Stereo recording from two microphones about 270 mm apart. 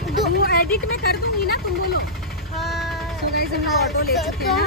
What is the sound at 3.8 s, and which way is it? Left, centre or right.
Speech, left.